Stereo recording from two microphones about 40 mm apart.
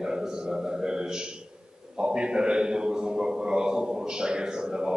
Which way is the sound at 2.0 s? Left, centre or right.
Right.